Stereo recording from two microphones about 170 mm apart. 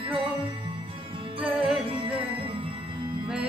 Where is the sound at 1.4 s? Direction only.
Centre (ahead or behind).